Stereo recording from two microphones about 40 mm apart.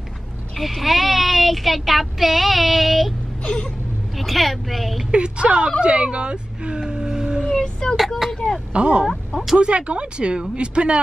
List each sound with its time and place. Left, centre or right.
0.6 s speech: centre
4.2 s a woman's voice: centre
5.1 s speech: right
6.8 s vehicle: centre
7.5 s a sound: centre
8.7 s speech: right
9.0 s a sound: centre
9.6 s speech: right